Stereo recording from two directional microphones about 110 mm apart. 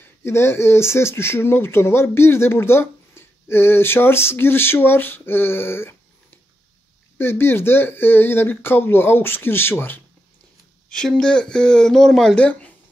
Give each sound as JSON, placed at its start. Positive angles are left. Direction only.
{"t": 0.2, "sound": "speech", "side_deg": 20}
{"t": 7.2, "sound": "speech", "side_deg": 20}
{"t": 10.9, "sound": "speech", "side_deg": 5}